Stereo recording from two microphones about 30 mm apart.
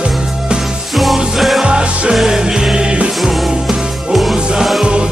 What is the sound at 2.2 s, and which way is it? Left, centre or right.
Music, right.